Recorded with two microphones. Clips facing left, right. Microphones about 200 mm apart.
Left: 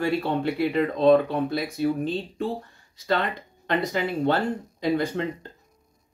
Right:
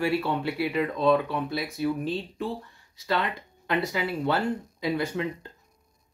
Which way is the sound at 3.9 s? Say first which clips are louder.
Left 3 dB; 35° left (ahead or behind).